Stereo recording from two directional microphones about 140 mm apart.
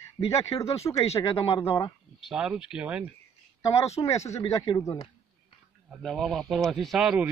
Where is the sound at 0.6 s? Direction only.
20° left (ahead or behind).